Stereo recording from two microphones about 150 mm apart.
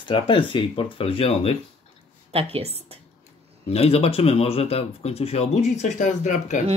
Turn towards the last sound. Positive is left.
turn(degrees=55)  # may be behind; listen again after turning